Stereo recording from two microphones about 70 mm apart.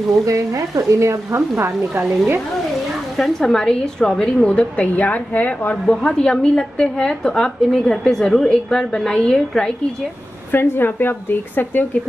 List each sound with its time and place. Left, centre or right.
0.2 s a woman's voice: right
3.2 s a woman's voice: centre; by 5.8 s left
5.9 s a woman's voice: centre
10.5 s a woman's voice: left